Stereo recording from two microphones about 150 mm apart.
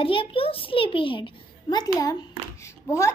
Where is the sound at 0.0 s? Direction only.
35° left (ahead or behind).